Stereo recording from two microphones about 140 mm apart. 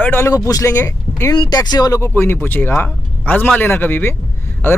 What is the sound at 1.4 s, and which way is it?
Speech, 30° left (ahead or behind).